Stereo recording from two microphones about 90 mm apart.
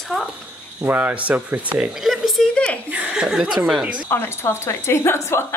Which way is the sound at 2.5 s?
10° left (ahead or behind).